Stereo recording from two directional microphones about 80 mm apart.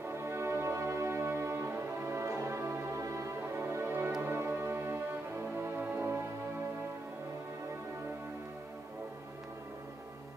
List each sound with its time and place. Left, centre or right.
0.0 s music: right